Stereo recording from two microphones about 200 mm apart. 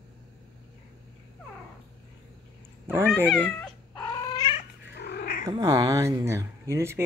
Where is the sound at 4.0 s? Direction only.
20° left (ahead or behind).